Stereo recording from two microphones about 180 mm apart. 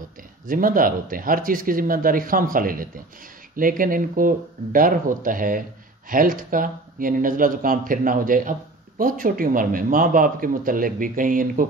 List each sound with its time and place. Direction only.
0.5 s speech: 50° right (ahead or behind)